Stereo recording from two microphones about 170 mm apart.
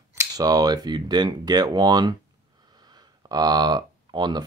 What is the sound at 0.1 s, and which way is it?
Speech, 20° right (ahead or behind).